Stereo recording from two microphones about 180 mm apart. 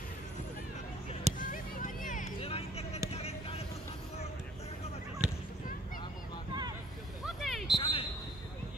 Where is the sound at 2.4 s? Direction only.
35° left (ahead or behind).